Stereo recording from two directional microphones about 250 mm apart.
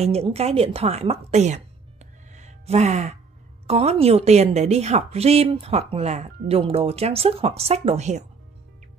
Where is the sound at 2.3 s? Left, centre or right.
Right.